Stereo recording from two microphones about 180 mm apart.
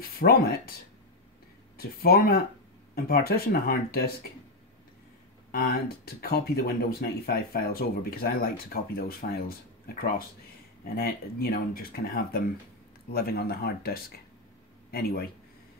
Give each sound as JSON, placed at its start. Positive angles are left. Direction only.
{"t": 0.0, "sound": "speech", "side_deg": 55}
{"t": 1.8, "sound": "speech", "side_deg": 60}
{"t": 5.5, "sound": "speech", "side_deg": 55}